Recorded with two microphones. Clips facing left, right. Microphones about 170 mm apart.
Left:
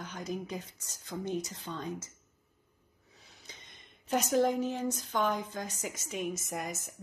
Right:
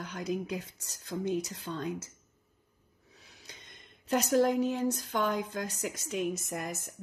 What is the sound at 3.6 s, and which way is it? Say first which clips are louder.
A woman's voice: right 2 dB; 60° right (ahead or behind).